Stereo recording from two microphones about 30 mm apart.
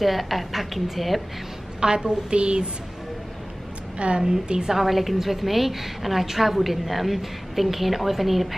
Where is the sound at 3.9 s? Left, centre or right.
Right.